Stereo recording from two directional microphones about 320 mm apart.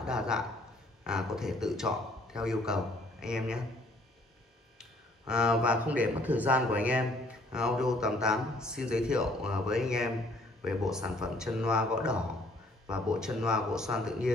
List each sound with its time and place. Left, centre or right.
0.0 s speech: centre
4.7 s speech: centre